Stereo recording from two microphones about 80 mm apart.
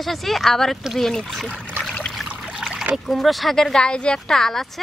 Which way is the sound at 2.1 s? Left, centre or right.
Centre.